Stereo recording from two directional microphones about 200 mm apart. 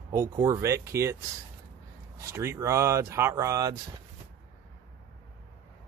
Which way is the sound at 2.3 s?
15° right (ahead or behind).